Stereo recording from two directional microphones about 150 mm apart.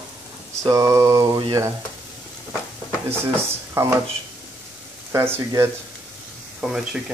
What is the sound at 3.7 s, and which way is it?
Speech, 20° right (ahead or behind).